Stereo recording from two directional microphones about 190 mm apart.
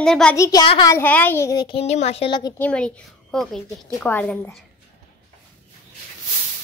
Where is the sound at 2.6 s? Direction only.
5° left (ahead or behind).